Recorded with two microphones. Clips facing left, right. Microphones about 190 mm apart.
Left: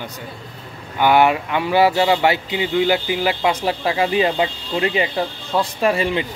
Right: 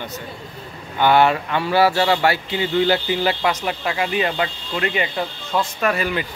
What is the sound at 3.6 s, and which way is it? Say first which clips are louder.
Speech: left 4 dB; 30° left (ahead or behind).